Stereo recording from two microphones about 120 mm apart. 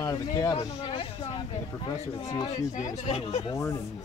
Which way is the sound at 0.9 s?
50° left (ahead or behind).